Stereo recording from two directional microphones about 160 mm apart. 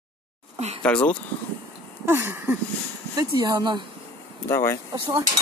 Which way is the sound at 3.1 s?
25° right (ahead or behind).